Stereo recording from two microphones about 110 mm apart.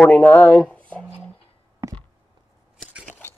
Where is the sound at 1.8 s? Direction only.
30° right (ahead or behind).